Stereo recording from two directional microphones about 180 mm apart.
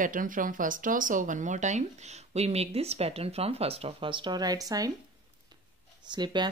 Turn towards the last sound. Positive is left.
turn(degrees=-25)  # may be behind; listen again after turning